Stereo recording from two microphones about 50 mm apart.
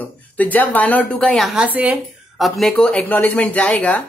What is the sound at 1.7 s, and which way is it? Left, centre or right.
Speech, right.